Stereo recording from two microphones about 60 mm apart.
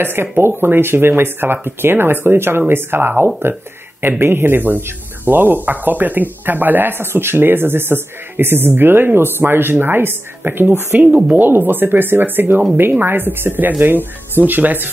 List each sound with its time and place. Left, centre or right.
0.0 s speech: right
11.1 s speech: centre
11.3 s speech: right